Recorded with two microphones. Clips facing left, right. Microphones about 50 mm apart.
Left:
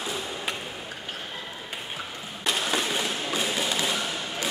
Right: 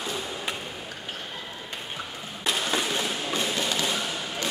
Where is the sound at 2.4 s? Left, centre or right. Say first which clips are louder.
Even; centre.